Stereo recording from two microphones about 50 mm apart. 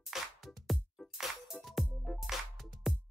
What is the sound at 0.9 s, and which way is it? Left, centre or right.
Music, centre.